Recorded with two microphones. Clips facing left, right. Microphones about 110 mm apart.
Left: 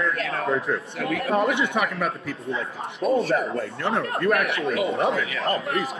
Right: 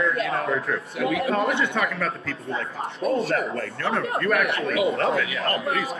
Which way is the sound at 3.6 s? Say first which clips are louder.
Left 1 dB; 20° left (ahead or behind).